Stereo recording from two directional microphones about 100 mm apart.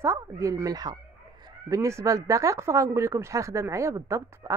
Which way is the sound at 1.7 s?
30° right (ahead or behind).